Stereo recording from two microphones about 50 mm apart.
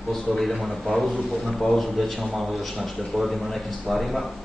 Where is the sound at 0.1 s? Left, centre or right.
Centre.